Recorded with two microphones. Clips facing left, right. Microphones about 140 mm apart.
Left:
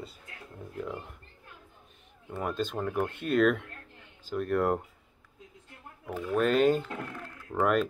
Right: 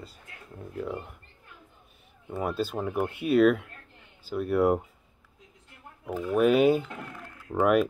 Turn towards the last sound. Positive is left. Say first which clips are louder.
# right 4 dB
turn(degrees=-10)  # may be behind; listen again after turning